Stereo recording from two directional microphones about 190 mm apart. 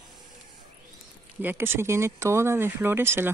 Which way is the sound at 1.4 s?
10° right (ahead or behind).